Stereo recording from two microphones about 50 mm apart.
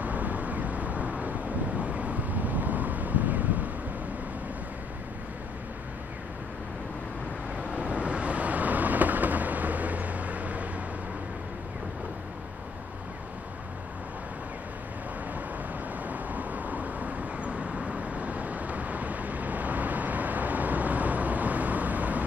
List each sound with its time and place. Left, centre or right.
0.0 s vehicle: right
7.7 s vehicle: right
16.0 s vehicle: right